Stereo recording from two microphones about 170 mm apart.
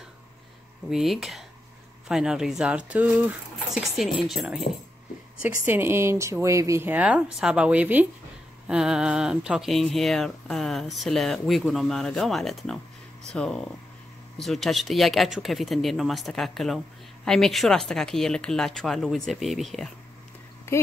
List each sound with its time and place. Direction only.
0.8 s speech: centre (ahead or behind)
5.7 s speech: 15° right (ahead or behind)
20.7 s a woman's voice: 15° left (ahead or behind)